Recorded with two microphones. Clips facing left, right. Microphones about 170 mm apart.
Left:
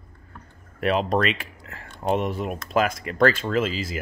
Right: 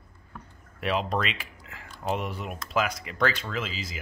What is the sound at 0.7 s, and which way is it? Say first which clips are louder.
Speech: left 6 dB; 45° left (ahead or behind).